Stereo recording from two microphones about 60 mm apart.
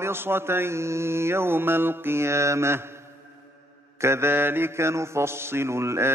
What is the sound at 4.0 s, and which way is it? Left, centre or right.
Mantra, right.